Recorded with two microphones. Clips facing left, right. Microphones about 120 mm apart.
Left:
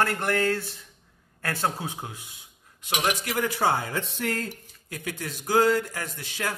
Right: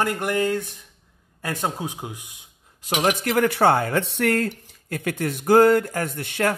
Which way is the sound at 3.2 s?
60° right (ahead or behind).